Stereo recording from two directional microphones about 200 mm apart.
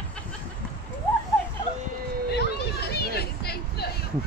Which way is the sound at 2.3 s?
55° left (ahead or behind).